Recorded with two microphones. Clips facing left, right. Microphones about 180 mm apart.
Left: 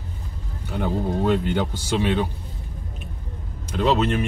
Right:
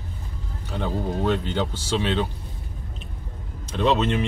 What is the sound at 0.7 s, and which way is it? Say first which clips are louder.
Speech: left 3 dB; 10° left (ahead or behind).